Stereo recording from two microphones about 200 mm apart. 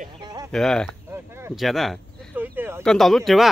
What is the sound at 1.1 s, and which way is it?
Speech, 10° right (ahead or behind).